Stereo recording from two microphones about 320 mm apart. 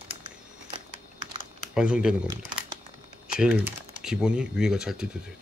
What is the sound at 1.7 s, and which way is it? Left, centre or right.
Speech, centre.